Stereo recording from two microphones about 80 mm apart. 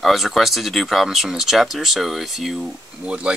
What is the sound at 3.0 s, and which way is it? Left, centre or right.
Speech, centre.